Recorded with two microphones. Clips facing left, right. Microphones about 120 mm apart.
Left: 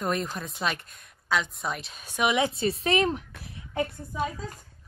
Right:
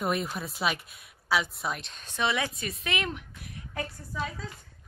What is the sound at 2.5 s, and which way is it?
Speech, 30° left (ahead or behind).